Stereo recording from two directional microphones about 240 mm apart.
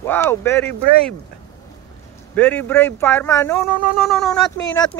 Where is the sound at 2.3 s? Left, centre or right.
Centre.